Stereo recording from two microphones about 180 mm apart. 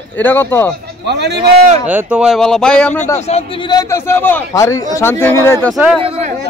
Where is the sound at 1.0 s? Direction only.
70° right (ahead or behind).